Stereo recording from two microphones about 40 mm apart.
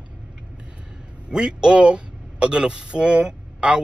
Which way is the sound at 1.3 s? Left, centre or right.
Centre.